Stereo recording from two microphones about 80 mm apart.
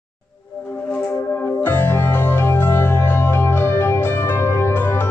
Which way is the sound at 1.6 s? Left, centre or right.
Left.